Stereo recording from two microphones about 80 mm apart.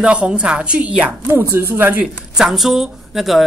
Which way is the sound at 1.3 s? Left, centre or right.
Right.